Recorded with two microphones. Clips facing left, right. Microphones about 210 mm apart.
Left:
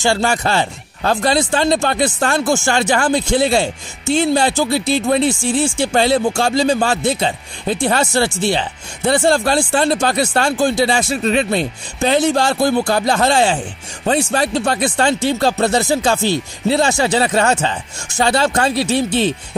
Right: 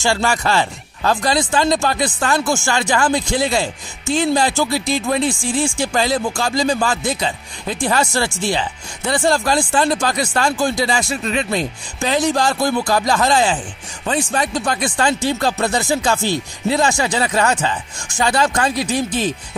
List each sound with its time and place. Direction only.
0.0 s speech: 40° left (ahead or behind)
1.2 s speech: 30° left (ahead or behind)
15.7 s speech: 45° left (ahead or behind)
16.1 s speech: 25° left (ahead or behind)
16.8 s speech: 40° left (ahead or behind)
17.1 s speech: 30° left (ahead or behind)